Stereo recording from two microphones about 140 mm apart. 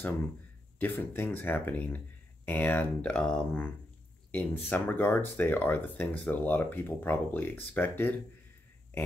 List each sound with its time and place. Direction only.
0.7 s speech: 15° left (ahead or behind)